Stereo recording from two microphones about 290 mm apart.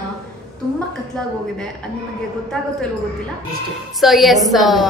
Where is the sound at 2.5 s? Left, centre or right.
Centre.